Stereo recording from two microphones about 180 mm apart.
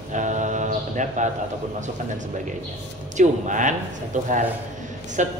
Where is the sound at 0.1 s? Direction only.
45° right (ahead or behind).